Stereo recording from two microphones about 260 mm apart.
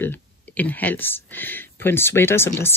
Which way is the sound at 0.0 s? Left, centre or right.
Centre.